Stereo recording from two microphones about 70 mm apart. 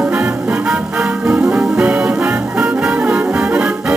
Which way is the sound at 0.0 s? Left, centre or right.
Centre.